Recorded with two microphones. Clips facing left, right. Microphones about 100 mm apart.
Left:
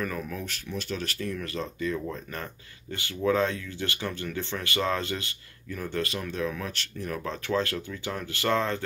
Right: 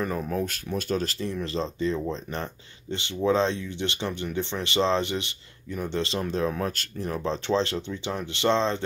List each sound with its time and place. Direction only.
0.0 s speech: 25° right (ahead or behind); by 1.0 s 45° right (ahead or behind)
1.0 s speech: 25° right (ahead or behind)
7.1 s speech: 25° right (ahead or behind)